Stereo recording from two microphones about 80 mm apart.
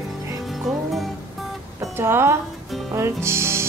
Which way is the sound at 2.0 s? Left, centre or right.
Right.